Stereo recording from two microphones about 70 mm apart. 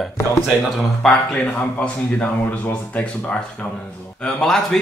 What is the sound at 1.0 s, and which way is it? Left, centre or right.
Speech, centre.